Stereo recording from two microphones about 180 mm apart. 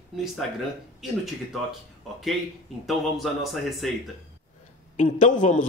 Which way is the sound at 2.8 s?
Centre (ahead or behind).